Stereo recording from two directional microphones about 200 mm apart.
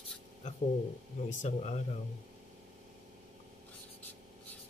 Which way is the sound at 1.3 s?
35° left (ahead or behind).